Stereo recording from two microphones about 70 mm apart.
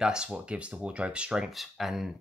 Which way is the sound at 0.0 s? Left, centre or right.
Centre.